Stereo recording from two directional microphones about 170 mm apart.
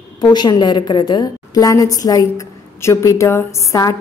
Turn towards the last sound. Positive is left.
turn(degrees=20)  # may be behind; listen again after turning